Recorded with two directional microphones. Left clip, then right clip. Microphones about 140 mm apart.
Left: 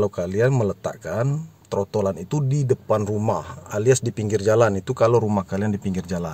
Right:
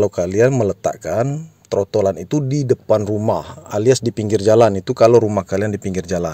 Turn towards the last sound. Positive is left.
turn(degrees=-30)  # may be behind; listen again after turning